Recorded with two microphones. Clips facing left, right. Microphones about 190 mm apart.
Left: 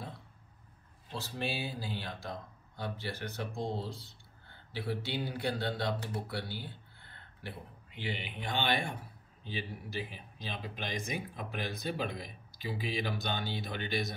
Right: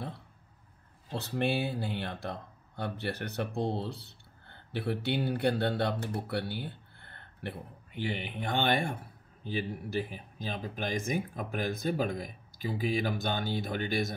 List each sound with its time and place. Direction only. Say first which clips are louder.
1.1 s speech: right 7 dB; 60° right (ahead or behind); by 14.1 s 45° right (ahead or behind)